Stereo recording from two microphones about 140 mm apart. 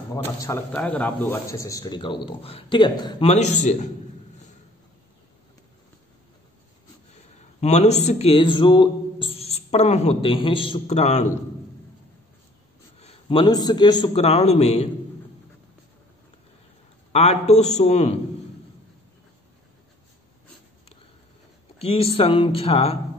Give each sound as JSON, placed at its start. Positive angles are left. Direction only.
{"t": 0.1, "sound": "a man's voice", "side_deg": 20}
{"t": 0.7, "sound": "a man's voice", "side_deg": 10}
{"t": 3.3, "sound": "a man's voice", "side_deg": 55}
{"t": 7.2, "sound": "speech", "side_deg": 50}
{"t": 10.9, "sound": "speech", "side_deg": 55}
{"t": 13.0, "sound": "a man's voice", "side_deg": 40}
{"t": 14.1, "sound": "speech", "side_deg": 45}
{"t": 17.1, "sound": "speech", "side_deg": 50}
{"t": 21.7, "sound": "speech", "side_deg": 45}